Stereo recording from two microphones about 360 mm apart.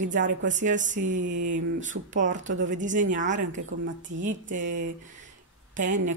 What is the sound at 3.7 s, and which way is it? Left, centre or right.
A woman's voice, right.